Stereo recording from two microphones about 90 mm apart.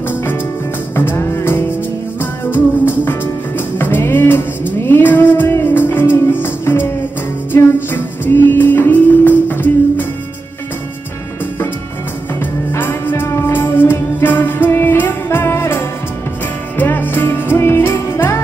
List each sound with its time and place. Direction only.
0.9 s music: 25° left (ahead or behind)
12.4 s music: 25° left (ahead or behind)